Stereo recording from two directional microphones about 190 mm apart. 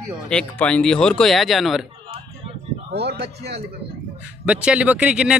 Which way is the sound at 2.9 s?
60° right (ahead or behind).